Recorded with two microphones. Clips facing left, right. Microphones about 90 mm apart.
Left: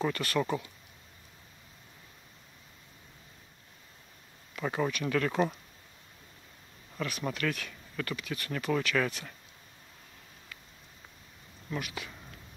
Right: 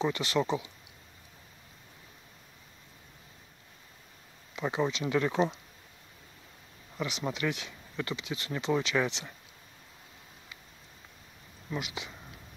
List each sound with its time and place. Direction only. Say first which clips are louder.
0.0 s speech: right 1 dB; 20° right (ahead or behind)
4.6 s speech: right 1 dB; 20° right (ahead or behind)
7.0 s speech: right 1 dB; 20° right (ahead or behind)
11.7 s speech: even; 20° right (ahead or behind)